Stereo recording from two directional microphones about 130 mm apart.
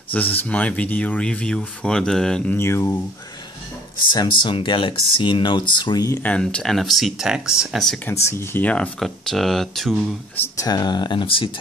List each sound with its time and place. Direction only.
0.4 s speech: 10° left (ahead or behind)
2.5 s speech: 20° left (ahead or behind)
4.1 s speech: 35° left (ahead or behind)
6.0 s speech: 15° left (ahead or behind)
8.1 s speech: 20° left (ahead or behind); by 9.9 s centre (ahead or behind)
10.5 s speech: 30° left (ahead or behind)